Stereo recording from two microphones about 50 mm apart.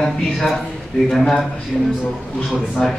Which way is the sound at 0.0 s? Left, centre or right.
Centre.